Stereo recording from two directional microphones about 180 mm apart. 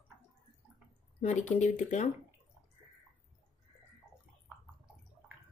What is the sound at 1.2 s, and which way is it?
Speech, 40° left (ahead or behind).